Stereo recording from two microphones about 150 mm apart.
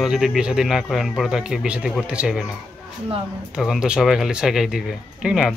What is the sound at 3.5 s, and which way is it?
Speech, centre (ahead or behind).